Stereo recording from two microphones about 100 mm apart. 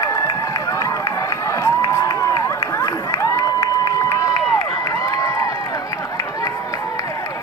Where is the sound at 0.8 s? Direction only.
35° left (ahead or behind).